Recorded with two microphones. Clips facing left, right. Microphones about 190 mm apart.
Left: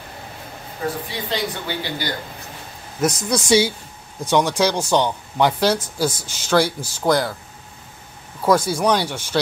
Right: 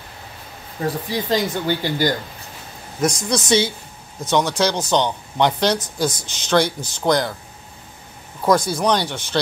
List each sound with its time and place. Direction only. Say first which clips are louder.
1.3 s a woman's voice: right 5 dB; 45° right (ahead or behind)
3.0 s speech: even; 5° left (ahead or behind)
8.4 s speech: even; 10° left (ahead or behind)